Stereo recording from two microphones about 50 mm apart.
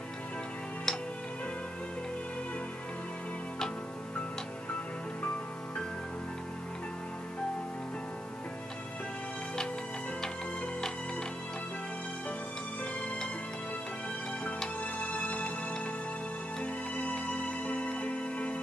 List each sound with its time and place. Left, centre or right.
0.9 s music: centre
14.8 s music: left